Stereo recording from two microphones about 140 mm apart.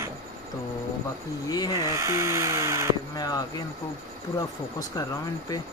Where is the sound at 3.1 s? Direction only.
30° left (ahead or behind).